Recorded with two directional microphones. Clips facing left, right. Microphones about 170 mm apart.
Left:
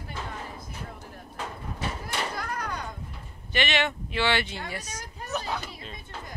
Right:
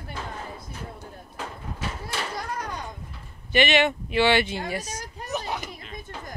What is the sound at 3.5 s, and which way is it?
Speech, 15° right (ahead or behind).